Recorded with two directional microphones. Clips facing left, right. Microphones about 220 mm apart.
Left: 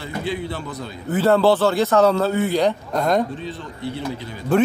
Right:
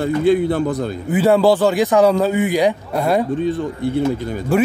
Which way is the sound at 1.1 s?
15° right (ahead or behind).